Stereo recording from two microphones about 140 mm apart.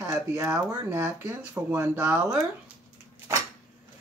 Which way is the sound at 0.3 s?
25° right (ahead or behind).